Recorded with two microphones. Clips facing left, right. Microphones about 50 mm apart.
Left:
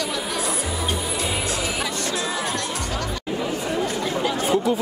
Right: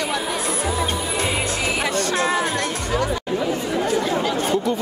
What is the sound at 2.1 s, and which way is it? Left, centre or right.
Music, right.